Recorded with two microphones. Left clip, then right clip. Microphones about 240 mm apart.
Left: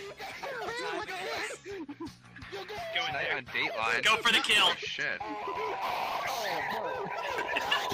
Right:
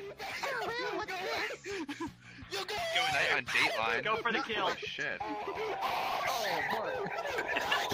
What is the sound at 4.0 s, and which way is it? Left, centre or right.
Speech, left.